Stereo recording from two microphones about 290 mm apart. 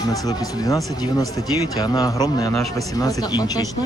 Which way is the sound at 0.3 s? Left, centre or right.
Centre.